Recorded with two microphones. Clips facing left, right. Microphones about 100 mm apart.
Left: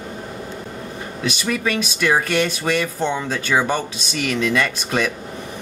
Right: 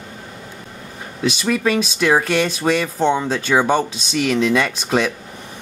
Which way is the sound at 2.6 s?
15° right (ahead or behind).